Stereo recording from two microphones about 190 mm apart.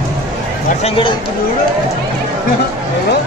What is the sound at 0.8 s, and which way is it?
Speech, 30° left (ahead or behind).